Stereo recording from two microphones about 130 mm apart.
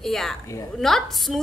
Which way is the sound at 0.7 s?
Centre (ahead or behind).